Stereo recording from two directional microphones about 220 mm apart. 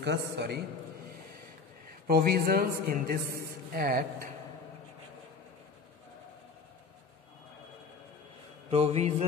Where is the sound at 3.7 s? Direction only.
40° right (ahead or behind).